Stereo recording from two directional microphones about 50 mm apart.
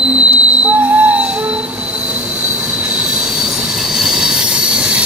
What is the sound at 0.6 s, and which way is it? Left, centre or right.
Train wheels squealing, right.